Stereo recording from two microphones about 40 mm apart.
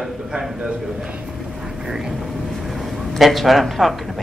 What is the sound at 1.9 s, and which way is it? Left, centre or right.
Speech, centre.